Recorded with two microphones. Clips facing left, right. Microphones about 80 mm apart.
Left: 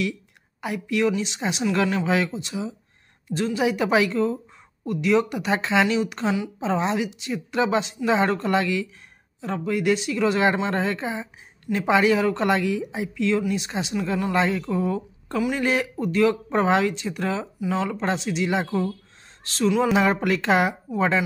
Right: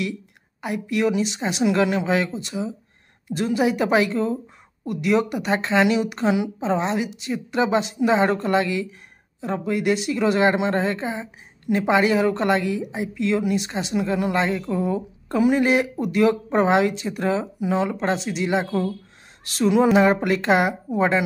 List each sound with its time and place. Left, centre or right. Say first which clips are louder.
0.8 s a woman's voice: right 1 dB; centre
14.0 s a woman's voice: right 3 dB; centre
14.3 s a woman's voice: even; centre
15.3 s speech: right 6 dB; right
15.6 s a woman's voice: right 3 dB; centre
18.0 s a woman's voice: right 1 dB; centre
19.4 s a sound: right 2 dB; centre
19.9 s a woman's voice: right 3 dB; centre